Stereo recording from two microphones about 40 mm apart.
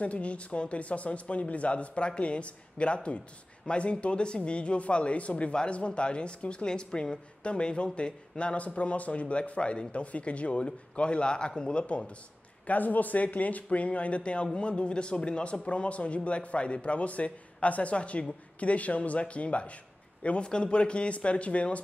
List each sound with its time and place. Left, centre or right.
0.0 s a woman's voice: left
12.6 s a woman's voice: left